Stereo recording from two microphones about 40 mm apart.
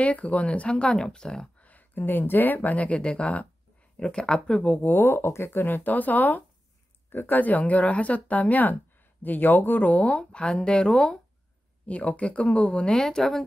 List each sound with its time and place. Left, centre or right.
0.0 s speech: left
1.0 s a woman's voice: centre
1.6 s speech: left
4.0 s speech: centre
4.7 s speech: left
5.0 s speech: left
5.9 s speech: left
11.8 s speech: left
12.9 s a woman's voice: centre